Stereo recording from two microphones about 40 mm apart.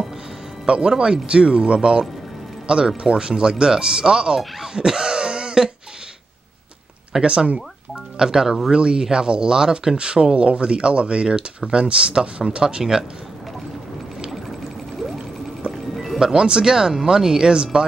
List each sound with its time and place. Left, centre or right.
0.7 s speech: right
4.7 s throat clearing: centre
7.1 s speech: right
8.2 s speech: centre
15.6 s music: right
16.2 s speech: centre